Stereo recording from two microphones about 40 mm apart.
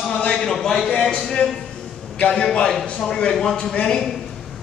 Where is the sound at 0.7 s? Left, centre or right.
Centre.